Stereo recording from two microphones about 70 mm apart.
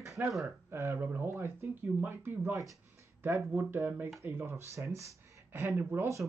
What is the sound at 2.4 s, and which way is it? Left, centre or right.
Speech, right.